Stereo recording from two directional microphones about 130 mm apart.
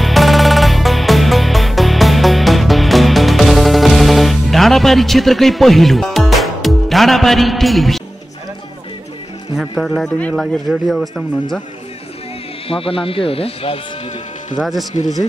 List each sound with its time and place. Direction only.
0.0 s music: centre (ahead or behind)
9.6 s speech: centre (ahead or behind)
12.6 s speech: 45° left (ahead or behind)
14.6 s speech: centre (ahead or behind)